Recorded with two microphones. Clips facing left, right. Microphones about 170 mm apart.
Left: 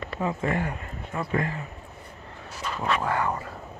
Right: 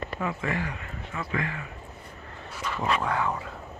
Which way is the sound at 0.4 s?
50° left (ahead or behind).